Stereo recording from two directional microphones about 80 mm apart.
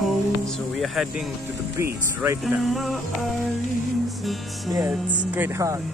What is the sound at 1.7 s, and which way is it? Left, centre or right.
Speech, right.